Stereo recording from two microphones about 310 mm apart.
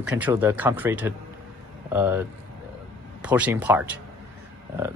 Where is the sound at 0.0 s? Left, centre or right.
Centre.